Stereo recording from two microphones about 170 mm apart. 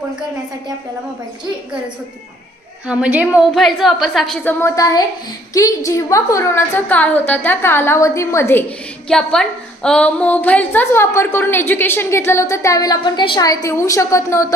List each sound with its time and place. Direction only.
2.9 s a woman's voice: 10° right (ahead or behind)
4.5 s a woman's voice: 15° left (ahead or behind)
9.1 s a woman's voice: 5° left (ahead or behind)